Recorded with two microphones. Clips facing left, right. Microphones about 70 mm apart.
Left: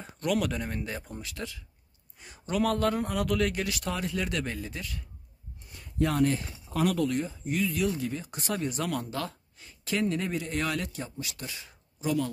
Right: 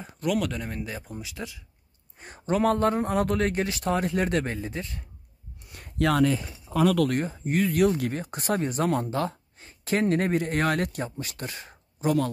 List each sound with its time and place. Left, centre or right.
0.0 s speech: centre
2.1 s a man's voice: right
4.0 s a man's voice: right
4.6 s a man's voice: right
5.7 s a sound: right
7.0 s speech: right